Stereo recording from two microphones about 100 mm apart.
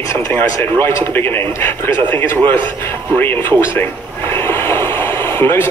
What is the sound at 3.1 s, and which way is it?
Speech, 20° left (ahead or behind).